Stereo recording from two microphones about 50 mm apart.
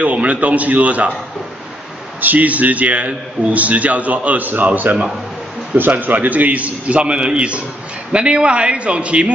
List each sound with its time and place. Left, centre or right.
0.0 s a man's voice: right
2.1 s a man's voice: right